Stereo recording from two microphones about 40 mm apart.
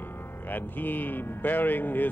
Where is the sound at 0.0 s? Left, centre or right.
Left.